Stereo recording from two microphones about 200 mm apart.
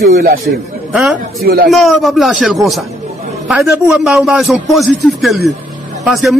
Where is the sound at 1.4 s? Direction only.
50° right (ahead or behind).